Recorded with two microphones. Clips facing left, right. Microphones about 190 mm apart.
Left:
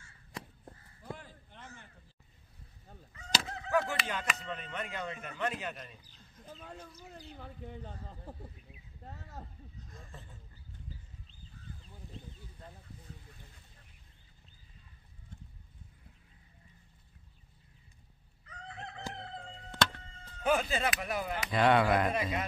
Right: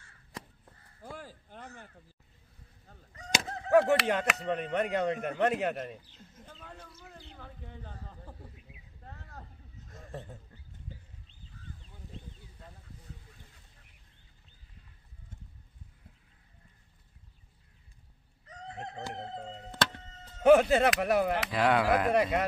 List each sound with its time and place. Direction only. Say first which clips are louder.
1.5 s a sound: right 5 dB; 40° right (ahead or behind)
3.1 s honk: right 3 dB; 35° right (ahead or behind)
3.7 s speech: right 9 dB; 70° right (ahead or behind)
6.4 s speech: left 3 dB; 10° left (ahead or behind)
7.8 s a man's voice: left 1 dB; 20° left (ahead or behind)
18.5 s chicken: right 4 dB; 40° right (ahead or behind)
20.4 s speech: right 10 dB; 65° right (ahead or behind)
21.5 s speech: left 5 dB; 5° right (ahead or behind)
22.1 s speech: right 7 dB; 65° right (ahead or behind)